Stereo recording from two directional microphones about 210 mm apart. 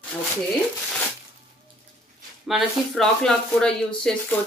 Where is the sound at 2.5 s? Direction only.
Centre (ahead or behind).